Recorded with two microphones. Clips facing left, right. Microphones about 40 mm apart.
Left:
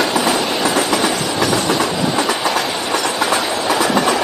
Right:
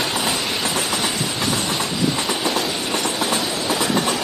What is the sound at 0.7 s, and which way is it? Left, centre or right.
Train, left.